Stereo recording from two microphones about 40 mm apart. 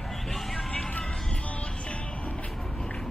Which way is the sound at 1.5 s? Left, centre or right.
Left.